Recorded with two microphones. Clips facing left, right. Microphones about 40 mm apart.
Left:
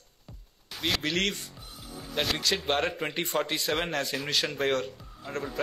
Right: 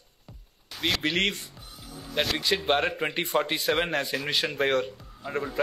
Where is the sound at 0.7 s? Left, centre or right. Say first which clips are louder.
Right 2 dB; centre.